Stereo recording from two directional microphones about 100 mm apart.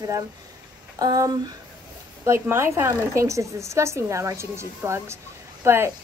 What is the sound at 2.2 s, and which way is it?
Speech, 25° right (ahead or behind).